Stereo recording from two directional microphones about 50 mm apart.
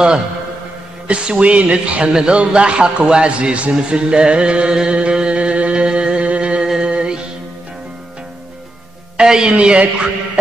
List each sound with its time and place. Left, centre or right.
1.0 s speech: right
3.9 s music: centre
9.1 s a man's voice: centre